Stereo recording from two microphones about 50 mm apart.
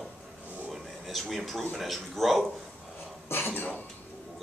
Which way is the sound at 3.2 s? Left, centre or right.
Left.